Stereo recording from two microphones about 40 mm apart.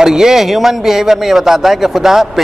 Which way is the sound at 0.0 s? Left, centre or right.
Centre.